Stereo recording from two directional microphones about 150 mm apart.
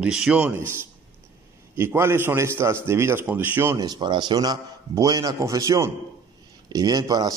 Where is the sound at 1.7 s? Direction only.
15° right (ahead or behind).